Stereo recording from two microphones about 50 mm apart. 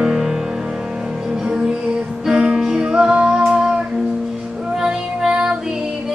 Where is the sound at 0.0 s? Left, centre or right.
Centre.